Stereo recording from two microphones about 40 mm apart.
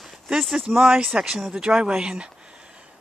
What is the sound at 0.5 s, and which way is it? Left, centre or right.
Speech, centre.